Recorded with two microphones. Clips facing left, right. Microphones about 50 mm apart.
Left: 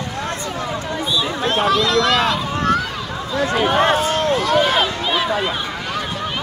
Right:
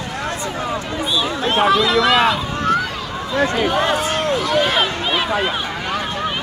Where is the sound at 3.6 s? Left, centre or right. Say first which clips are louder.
Left 2 dB; left.